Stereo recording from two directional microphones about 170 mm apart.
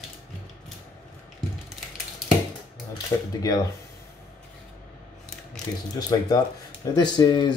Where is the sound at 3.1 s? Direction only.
20° left (ahead or behind).